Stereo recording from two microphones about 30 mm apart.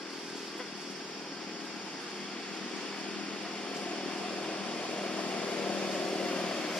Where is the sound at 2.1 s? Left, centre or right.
Left.